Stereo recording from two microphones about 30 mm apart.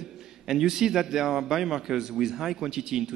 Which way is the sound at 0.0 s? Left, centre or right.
Centre.